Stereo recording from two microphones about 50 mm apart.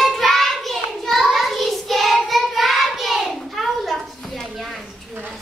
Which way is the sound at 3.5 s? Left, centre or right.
Centre.